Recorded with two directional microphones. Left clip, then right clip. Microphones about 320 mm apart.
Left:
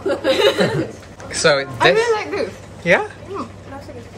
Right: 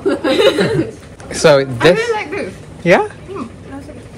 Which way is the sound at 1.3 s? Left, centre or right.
Centre.